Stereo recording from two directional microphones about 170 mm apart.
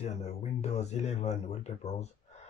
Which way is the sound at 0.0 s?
40° left (ahead or behind).